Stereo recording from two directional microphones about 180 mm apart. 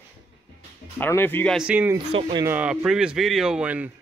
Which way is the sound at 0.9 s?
10° left (ahead or behind).